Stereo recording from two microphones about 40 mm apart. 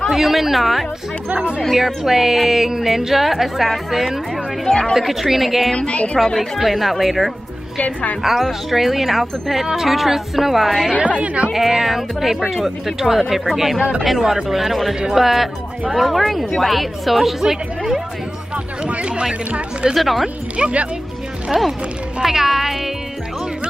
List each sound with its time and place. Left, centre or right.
0.1 s speech: centre
2.0 s speech: centre
5.8 s a woman's voice: left
6.1 s a woman's voice: centre
6.6 s speech: centre
7.8 s a woman's voice: left
8.2 s speech: centre
11.0 s speech: right
11.5 s speech: centre
18.9 s speech: right
19.9 s speech: centre
20.5 s speech: right
22.2 s speech: centre